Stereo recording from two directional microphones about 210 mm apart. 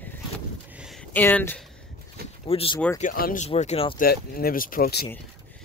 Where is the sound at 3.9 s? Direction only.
45° left (ahead or behind).